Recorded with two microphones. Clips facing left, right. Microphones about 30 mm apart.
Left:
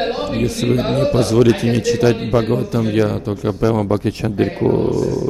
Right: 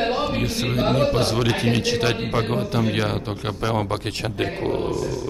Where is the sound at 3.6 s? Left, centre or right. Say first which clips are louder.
Left 6 dB; centre.